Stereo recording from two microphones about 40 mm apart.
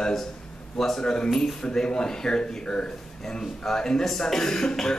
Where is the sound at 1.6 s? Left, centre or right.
Centre.